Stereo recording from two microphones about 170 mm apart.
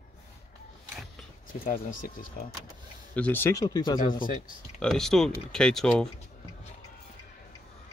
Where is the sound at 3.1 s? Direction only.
10° left (ahead or behind).